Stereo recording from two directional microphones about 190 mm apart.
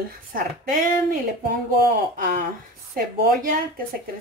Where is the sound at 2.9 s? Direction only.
50° right (ahead or behind).